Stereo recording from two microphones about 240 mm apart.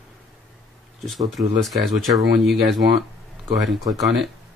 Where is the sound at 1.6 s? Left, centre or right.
Centre.